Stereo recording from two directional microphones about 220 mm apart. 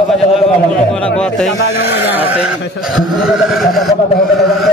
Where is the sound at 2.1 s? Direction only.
5° right (ahead or behind).